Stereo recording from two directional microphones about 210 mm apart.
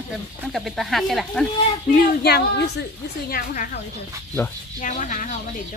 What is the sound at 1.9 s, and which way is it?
Child singing, 50° left (ahead or behind).